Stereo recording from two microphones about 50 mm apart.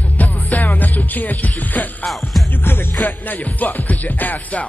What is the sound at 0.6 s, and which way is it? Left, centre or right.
Music, left.